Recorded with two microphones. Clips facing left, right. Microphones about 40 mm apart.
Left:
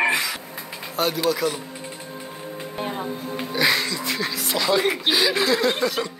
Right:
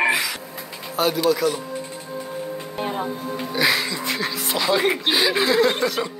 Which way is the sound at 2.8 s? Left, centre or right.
Right.